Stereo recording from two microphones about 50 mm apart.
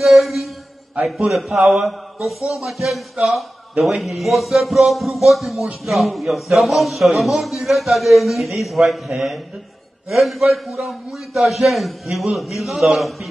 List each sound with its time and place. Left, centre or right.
0.0 s mantra: centre
1.0 s speech: centre